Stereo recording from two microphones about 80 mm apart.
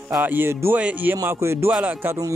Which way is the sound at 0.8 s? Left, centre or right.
Centre.